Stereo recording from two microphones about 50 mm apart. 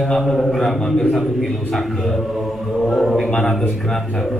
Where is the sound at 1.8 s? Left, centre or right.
Centre.